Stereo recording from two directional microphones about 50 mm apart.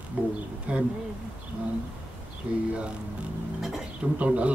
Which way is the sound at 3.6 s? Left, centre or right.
Centre.